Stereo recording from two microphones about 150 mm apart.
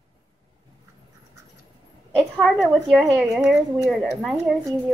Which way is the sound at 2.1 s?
5° right (ahead or behind).